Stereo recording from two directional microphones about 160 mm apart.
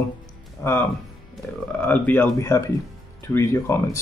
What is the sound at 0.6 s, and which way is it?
Speech, 20° left (ahead or behind).